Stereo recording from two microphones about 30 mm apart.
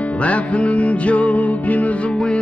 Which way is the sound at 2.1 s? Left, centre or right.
Left.